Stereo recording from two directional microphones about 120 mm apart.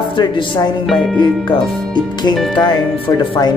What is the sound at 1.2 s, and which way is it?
Speech, 40° left (ahead or behind).